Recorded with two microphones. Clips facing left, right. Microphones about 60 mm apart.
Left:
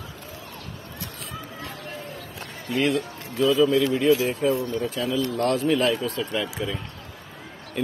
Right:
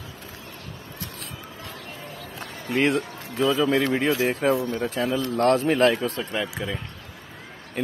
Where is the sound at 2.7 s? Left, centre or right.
Right.